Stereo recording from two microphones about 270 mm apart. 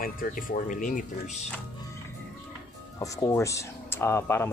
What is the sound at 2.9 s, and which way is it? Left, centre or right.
Speech, centre.